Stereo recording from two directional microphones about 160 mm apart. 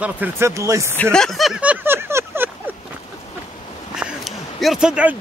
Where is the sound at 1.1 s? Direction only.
Centre (ahead or behind); by 2.5 s 15° right (ahead or behind).